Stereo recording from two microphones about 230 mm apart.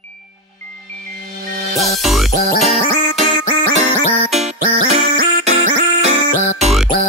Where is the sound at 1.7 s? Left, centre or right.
Centre.